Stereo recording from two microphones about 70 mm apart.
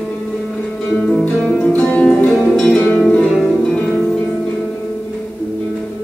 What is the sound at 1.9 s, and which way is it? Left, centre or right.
Music, centre.